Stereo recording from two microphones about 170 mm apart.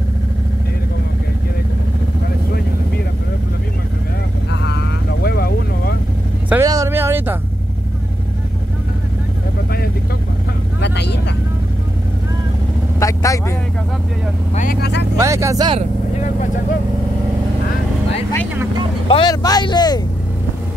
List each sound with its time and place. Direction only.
4.6 s vehicle: 80° left
6.5 s a sound: 20° right (ahead or behind)
10.8 s vehicle: 90° left
13.0 s vehicle: 20° left (ahead or behind)
14.5 s vehicle: 50° left (ahead or behind)
14.8 s vehicle: 90° left
15.1 s speech: 15° right (ahead or behind)
19.0 s speech: 25° left (ahead or behind)